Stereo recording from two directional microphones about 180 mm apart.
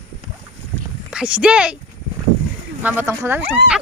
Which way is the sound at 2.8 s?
10° right (ahead or behind).